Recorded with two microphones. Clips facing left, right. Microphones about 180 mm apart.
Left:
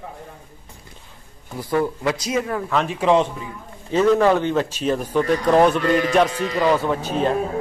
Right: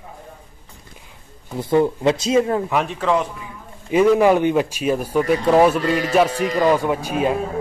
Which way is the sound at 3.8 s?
10° right (ahead or behind).